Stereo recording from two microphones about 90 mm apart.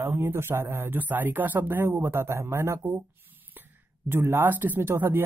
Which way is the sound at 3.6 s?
25° right (ahead or behind).